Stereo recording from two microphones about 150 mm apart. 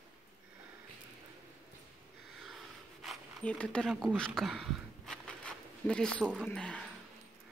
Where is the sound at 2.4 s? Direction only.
Centre (ahead or behind).